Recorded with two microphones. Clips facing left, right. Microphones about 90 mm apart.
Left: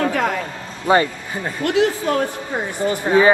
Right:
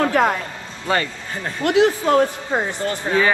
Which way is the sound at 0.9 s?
20° left (ahead or behind).